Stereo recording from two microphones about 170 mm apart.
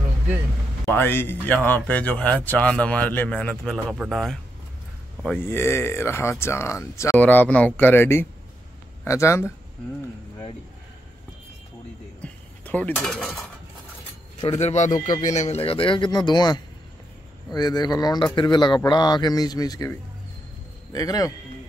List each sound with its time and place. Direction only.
0.9 s speech: 10° left (ahead or behind)
12.2 s dishes: 10° left (ahead or behind)
14.6 s speech: 40° left (ahead or behind); by 21.3 s 20° left (ahead or behind)